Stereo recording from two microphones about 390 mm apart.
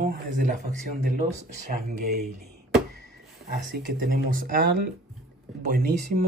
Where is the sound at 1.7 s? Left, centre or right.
Right.